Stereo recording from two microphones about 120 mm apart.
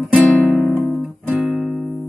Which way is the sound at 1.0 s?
15° right (ahead or behind).